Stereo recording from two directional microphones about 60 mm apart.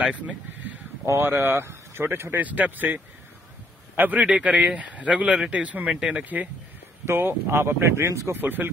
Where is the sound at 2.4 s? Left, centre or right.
Right.